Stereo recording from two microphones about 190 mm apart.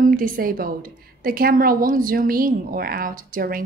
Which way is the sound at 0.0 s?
50° right (ahead or behind).